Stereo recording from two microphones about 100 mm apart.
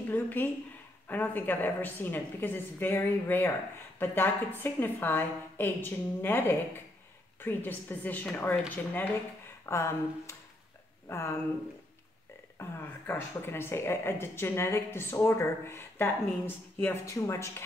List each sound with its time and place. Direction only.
0.1 s a sound: 20° left (ahead or behind)
1.0 s speech: 20° left (ahead or behind)
12.5 s speech: 25° left (ahead or behind)
17.0 s speech: 30° left (ahead or behind)